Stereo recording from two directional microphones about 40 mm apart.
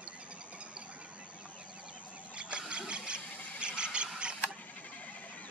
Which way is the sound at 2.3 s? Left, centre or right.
Right.